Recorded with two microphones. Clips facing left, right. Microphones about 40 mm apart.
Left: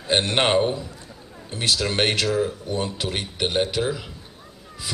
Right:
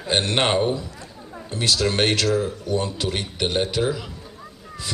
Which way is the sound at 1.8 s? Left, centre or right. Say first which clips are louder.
Right 2 dB; left.